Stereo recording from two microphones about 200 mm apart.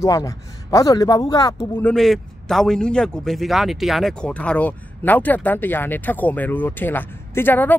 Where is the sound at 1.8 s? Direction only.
Centre (ahead or behind).